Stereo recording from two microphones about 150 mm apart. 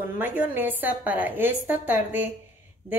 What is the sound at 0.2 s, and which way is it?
A woman's voice, 10° right (ahead or behind).